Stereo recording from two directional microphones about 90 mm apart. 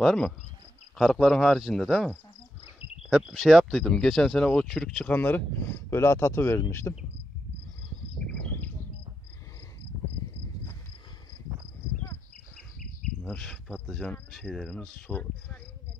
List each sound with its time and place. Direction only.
0.0 s speech: 10° left (ahead or behind)
3.1 s speech: 5° right (ahead or behind)
5.1 s speech: 20° left (ahead or behind)
8.3 s a sound: 15° left (ahead or behind)
13.2 s speech: 5° left (ahead or behind)